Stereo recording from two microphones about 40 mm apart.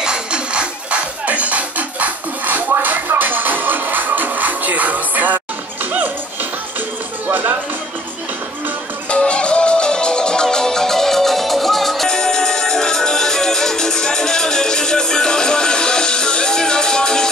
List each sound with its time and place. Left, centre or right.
0.0 s music: right
1.2 s music: right
7.2 s music: right
9.1 s music: left; by 12.1 s centre
12.1 s music: centre